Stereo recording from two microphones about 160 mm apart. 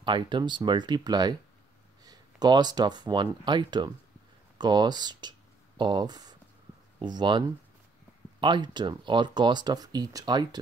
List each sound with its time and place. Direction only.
0.0 s speech: 30° right (ahead or behind)